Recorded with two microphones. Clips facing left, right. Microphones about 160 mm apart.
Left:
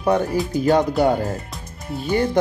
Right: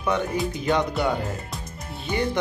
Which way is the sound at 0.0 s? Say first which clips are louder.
Left 5 dB; 35° left (ahead or behind).